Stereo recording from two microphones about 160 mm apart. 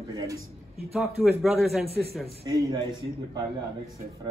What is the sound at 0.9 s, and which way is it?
Speech, centre (ahead or behind).